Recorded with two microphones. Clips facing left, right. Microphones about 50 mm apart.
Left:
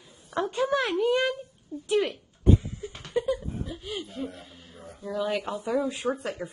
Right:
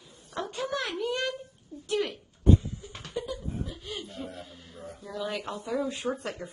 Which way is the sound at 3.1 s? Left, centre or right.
Left.